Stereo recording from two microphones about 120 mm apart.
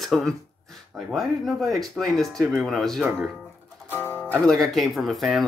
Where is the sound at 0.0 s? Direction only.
5° left (ahead or behind).